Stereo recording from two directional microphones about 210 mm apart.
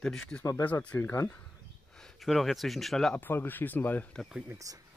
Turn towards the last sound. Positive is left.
turn(degrees=-15)  # may be behind; listen again after turning